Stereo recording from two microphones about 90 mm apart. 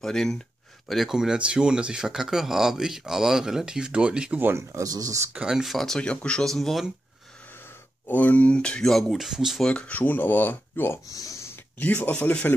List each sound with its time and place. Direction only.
0.0 s speech: 5° left (ahead or behind)
4.6 s speech: 40° right (ahead or behind)
5.3 s speech: 10° right (ahead or behind)
8.1 s speech: 15° left (ahead or behind); by 9.7 s 5° right (ahead or behind)
9.7 s speech: 15° left (ahead or behind)
11.1 s speech: 40° left (ahead or behind)
11.8 s speech: 20° left (ahead or behind)